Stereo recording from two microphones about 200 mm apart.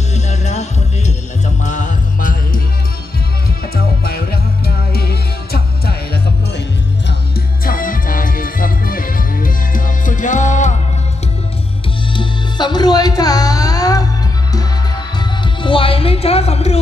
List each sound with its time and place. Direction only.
0.1 s music: 35° left (ahead or behind)
3.7 s music: 50° left (ahead or behind)
7.6 s music: 45° left (ahead or behind)
12.1 s music: 25° left (ahead or behind)
15.1 s music: 25° left (ahead or behind)